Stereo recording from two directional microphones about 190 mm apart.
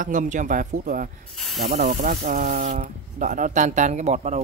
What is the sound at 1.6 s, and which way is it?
Speech, 55° right (ahead or behind).